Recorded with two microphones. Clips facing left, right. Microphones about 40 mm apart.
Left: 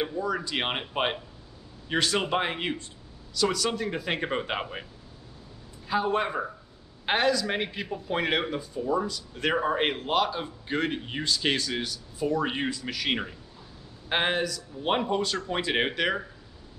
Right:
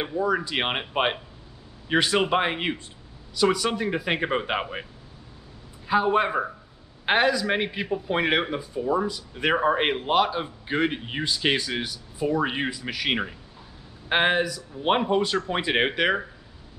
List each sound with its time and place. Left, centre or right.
0.0 s speech: centre
5.9 s speech: centre